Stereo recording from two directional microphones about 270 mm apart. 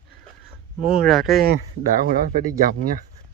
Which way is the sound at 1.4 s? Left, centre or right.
Right.